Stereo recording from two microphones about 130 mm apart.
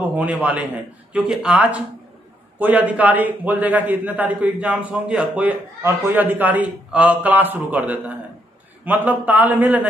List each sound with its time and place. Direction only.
0.1 s a man's voice: 10° right (ahead or behind)
5.8 s a man's voice: 20° right (ahead or behind)